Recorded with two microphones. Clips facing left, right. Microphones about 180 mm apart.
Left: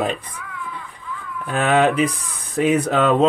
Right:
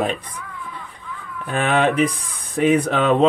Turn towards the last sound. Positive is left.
turn(degrees=0)  # may be behind; listen again after turning